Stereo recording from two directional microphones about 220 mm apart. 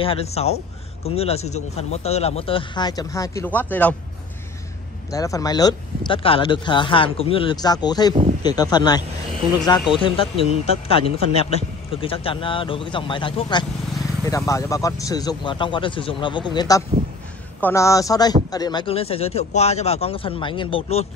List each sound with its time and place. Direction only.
0.0 s speech: 25° left (ahead or behind); by 3.9 s 10° left (ahead or behind)
5.1 s speech: 15° left (ahead or behind)